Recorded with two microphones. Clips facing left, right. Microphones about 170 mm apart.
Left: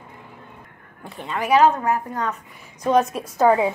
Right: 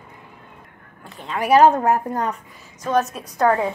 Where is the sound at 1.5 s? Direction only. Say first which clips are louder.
Right 3 dB; 45° right (ahead or behind).